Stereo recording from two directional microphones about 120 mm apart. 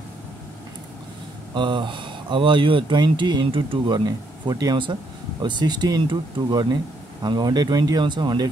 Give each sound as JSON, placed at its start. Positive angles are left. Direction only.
{"t": 1.5, "sound": "speech", "side_deg": -40}